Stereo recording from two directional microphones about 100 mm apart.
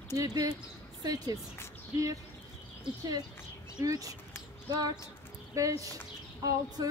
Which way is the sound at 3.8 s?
35° right (ahead or behind).